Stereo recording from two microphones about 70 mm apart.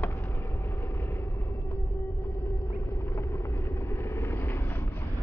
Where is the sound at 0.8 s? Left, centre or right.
Left.